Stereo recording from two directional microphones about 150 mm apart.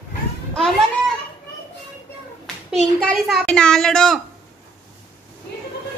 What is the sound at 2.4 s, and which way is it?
A child's voice, 5° left (ahead or behind).